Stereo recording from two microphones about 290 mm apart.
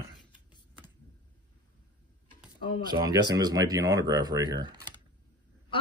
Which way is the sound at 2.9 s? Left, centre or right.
Centre.